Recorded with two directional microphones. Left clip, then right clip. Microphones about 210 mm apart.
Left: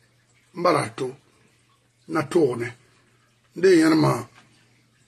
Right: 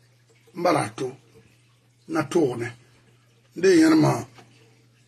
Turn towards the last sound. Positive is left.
turn(degrees=5)  # may be behind; listen again after turning